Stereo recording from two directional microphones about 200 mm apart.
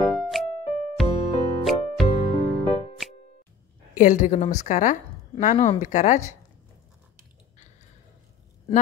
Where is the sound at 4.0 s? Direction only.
40° left (ahead or behind).